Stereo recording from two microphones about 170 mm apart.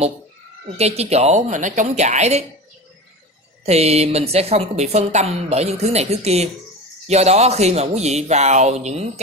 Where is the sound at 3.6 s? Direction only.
40° right (ahead or behind).